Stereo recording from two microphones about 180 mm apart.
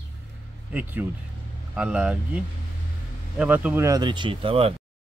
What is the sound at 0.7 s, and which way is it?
A man's voice, 10° right (ahead or behind).